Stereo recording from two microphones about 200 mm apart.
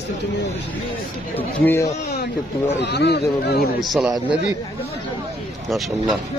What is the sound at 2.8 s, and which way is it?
Speech, 55° left (ahead or behind).